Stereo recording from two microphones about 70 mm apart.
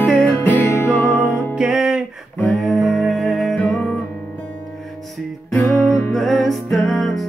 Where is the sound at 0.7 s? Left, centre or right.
Left.